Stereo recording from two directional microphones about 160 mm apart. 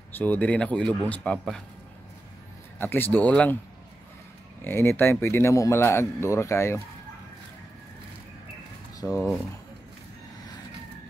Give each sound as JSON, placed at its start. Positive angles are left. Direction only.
{"t": 0.2, "sound": "speech", "side_deg": 10}
{"t": 2.8, "sound": "speech", "side_deg": 10}
{"t": 4.6, "sound": "speech", "side_deg": 15}
{"t": 9.0, "sound": "speech", "side_deg": 20}